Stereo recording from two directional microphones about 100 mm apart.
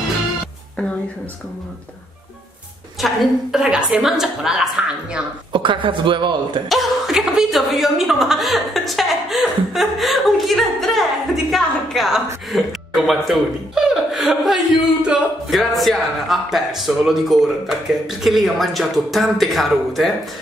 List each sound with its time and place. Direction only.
3.0 s a woman's voice: centre (ahead or behind)
5.5 s a man's voice: 55° right (ahead or behind)
6.7 s speech: centre (ahead or behind)